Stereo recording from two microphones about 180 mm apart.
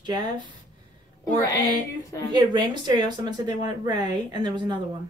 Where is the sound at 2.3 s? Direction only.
25° right (ahead or behind).